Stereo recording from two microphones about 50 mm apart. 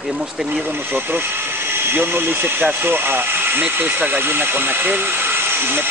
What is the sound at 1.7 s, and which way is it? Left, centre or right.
Speech, right.